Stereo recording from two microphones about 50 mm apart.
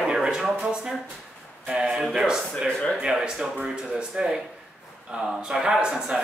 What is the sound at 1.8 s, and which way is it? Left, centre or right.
Speech, centre.